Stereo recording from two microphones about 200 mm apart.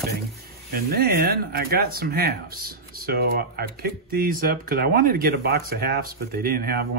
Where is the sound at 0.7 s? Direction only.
50° right (ahead or behind).